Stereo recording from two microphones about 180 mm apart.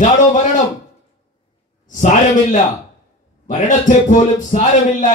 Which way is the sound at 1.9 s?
45° left (ahead or behind).